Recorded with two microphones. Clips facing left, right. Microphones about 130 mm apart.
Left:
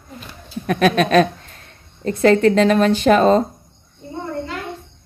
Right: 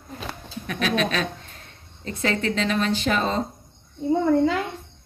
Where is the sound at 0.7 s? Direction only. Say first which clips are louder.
Left 8 dB; 50° left (ahead or behind).